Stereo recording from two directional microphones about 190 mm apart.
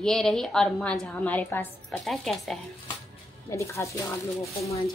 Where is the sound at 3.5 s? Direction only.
15° left (ahead or behind).